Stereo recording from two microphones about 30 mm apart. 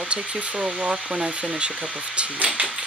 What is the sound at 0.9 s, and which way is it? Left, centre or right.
Speech, right.